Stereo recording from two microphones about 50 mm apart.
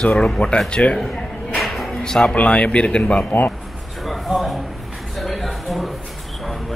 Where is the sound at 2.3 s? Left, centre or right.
Left.